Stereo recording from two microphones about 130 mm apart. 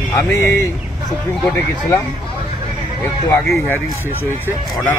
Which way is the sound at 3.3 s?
20° left (ahead or behind).